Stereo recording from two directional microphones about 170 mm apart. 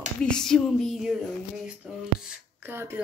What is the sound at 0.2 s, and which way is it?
Speech, 5° left (ahead or behind).